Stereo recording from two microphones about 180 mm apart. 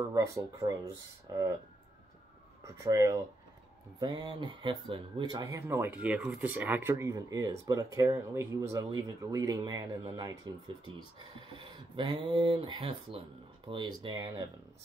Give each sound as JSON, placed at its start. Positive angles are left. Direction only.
{"t": 0.1, "sound": "speech", "side_deg": -20}
{"t": 2.6, "sound": "speech", "side_deg": -20}